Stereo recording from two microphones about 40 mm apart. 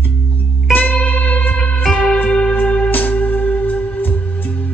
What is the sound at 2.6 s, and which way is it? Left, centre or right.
Music, left.